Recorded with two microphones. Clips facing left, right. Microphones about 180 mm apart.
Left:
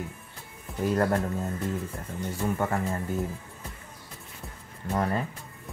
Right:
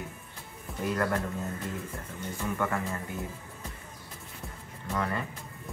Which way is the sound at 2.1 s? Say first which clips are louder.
Left 4 dB; 35° left (ahead or behind).